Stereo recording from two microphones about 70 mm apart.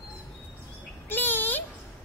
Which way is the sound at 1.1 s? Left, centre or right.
Left.